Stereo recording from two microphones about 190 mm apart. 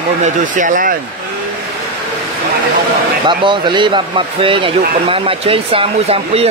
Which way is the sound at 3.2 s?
25° right (ahead or behind).